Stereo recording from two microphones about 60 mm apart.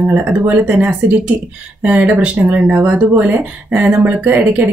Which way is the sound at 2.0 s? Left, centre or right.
Right.